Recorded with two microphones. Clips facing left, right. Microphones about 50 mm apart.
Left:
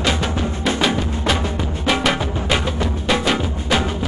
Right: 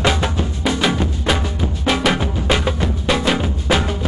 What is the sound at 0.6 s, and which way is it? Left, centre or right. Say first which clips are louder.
Music: right 1 dB; centre.